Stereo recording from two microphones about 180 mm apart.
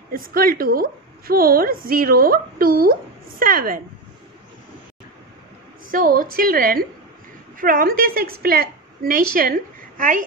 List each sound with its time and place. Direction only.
0.1 s a woman's voice: 50° right (ahead or behind)
5.9 s a woman's voice: 50° right (ahead or behind)